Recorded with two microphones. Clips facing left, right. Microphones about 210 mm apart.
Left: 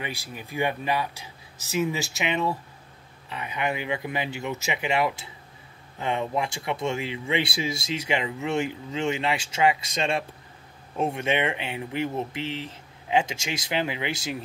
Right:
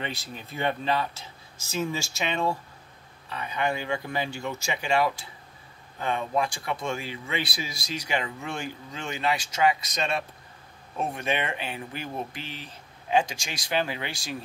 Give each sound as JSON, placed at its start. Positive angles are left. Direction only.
{"t": 0.0, "sound": "speech", "side_deg": 10}